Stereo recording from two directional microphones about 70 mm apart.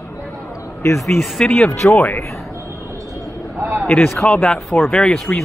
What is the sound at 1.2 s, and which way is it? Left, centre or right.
Speech, centre.